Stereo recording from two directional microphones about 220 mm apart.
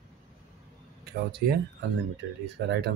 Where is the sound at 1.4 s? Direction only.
45° right (ahead or behind).